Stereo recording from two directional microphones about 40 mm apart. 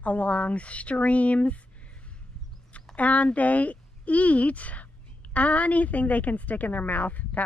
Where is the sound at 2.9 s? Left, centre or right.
Left.